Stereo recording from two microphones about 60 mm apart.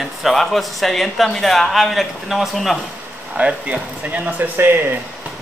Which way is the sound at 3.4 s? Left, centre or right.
Right.